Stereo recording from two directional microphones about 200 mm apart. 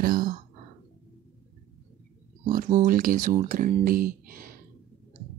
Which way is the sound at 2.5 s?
40° right (ahead or behind).